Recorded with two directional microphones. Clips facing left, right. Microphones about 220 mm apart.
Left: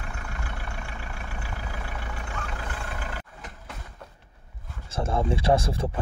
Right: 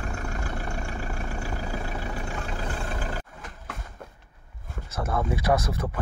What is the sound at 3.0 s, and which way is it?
Vehicle, 35° right (ahead or behind).